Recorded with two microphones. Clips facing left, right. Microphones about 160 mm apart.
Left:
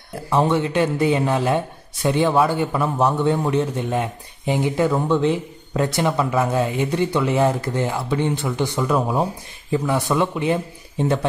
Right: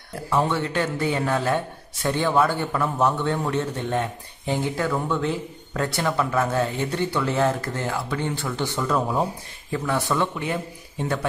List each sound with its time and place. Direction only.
0.3 s a man's voice: 20° left (ahead or behind)